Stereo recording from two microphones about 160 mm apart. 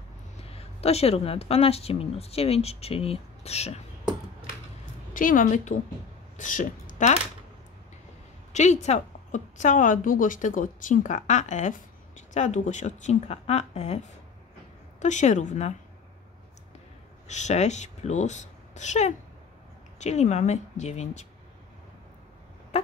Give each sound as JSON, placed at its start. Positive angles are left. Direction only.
{"t": 0.5, "sound": "speech", "side_deg": 40}
{"t": 5.1, "sound": "a woman's voice", "side_deg": 55}
{"t": 8.5, "sound": "a woman's voice", "side_deg": 45}
{"t": 17.3, "sound": "a woman's voice", "side_deg": 45}